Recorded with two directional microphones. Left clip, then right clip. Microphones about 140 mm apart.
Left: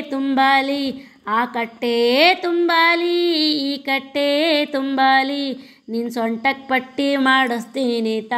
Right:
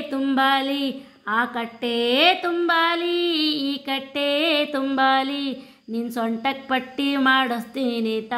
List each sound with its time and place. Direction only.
0.1 s a woman's voice: 30° left (ahead or behind)